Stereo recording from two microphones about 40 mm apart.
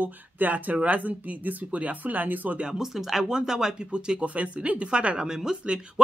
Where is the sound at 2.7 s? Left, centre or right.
Centre.